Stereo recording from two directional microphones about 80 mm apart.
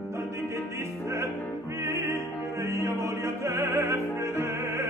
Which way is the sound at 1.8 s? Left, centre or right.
Right.